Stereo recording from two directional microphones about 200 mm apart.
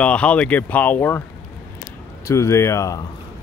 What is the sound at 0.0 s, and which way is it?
Speech, 5° left (ahead or behind).